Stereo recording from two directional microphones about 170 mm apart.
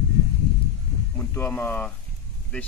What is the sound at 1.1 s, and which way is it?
Speech, 10° left (ahead or behind).